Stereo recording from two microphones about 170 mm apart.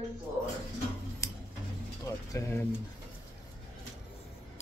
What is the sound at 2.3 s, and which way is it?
Speech, 15° left (ahead or behind).